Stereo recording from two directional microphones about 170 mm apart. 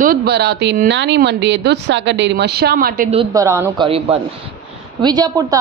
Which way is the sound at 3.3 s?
20° right (ahead or behind).